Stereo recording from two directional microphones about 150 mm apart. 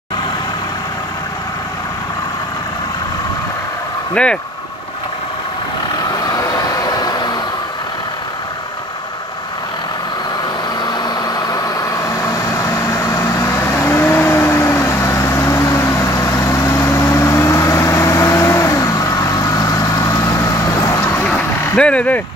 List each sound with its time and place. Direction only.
4.1 s speech: 5° left (ahead or behind)
6.1 s vehicle: 25° left (ahead or behind)
10.8 s vehicle: 30° left (ahead or behind)
21.0 s vehicle: 10° left (ahead or behind)